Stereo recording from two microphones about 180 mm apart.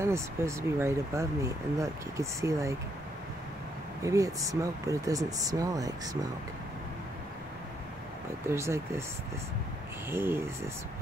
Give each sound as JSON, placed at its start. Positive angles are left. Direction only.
{"t": 0.0, "sound": "speech", "side_deg": -15}
{"t": 4.0, "sound": "speech", "side_deg": -20}
{"t": 8.5, "sound": "speech", "side_deg": -15}
{"t": 10.0, "sound": "speech", "side_deg": -15}